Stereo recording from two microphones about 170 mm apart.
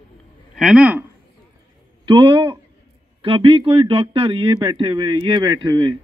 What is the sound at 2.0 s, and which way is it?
A man's voice, 30° right (ahead or behind).